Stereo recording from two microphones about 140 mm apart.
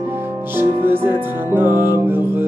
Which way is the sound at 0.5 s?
15° right (ahead or behind).